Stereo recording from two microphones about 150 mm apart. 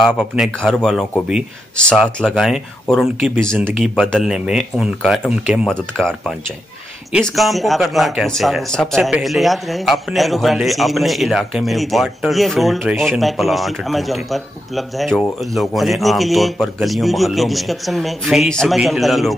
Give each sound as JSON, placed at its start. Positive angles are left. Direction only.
{"t": 0.0, "sound": "a man's voice", "side_deg": 5}